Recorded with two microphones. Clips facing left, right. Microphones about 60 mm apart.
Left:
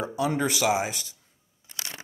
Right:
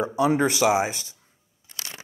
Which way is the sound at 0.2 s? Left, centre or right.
Centre.